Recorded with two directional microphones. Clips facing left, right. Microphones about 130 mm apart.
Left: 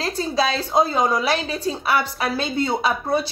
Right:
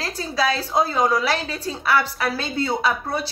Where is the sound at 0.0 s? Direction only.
20° left (ahead or behind).